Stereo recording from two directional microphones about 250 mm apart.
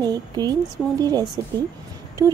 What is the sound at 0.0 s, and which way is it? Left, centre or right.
Speech, centre.